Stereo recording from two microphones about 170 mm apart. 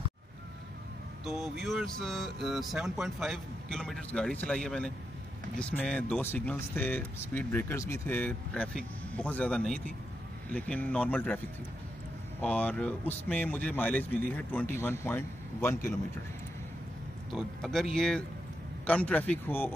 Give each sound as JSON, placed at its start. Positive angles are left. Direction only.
{"t": 1.2, "sound": "speech", "side_deg": 0}
{"t": 17.3, "sound": "speech", "side_deg": 0}